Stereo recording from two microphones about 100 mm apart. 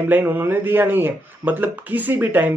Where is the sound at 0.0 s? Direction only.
20° right (ahead or behind).